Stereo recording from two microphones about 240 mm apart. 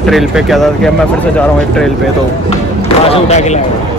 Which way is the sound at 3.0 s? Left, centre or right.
Left.